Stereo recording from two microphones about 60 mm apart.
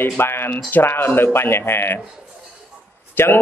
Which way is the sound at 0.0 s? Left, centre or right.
Left.